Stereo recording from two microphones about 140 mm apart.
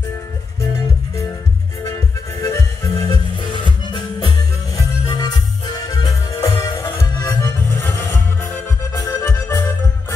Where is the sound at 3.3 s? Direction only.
35° left (ahead or behind); by 9.6 s 15° left (ahead or behind).